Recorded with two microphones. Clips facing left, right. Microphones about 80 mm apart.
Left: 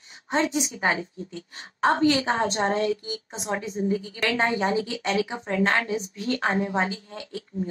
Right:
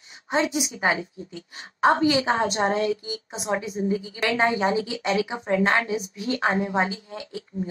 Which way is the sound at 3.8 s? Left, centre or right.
Right.